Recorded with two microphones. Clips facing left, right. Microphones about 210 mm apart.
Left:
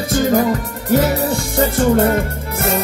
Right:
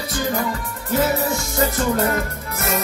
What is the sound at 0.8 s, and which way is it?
Music, 35° left (ahead or behind).